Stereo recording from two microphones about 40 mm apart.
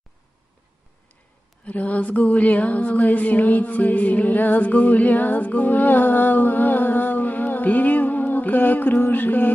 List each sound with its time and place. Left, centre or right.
1.6 s mantra: left